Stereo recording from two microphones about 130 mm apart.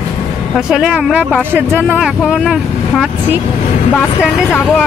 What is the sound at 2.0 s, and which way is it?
A woman's voice, 5° right (ahead or behind).